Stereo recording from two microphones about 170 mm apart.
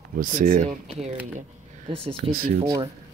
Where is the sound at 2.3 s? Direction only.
60° right (ahead or behind).